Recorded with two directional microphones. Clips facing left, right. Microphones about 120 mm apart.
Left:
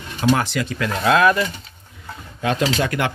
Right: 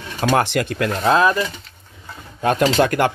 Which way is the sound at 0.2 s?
55° right (ahead or behind).